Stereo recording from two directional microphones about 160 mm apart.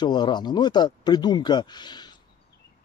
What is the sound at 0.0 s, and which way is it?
Speech, 25° left (ahead or behind).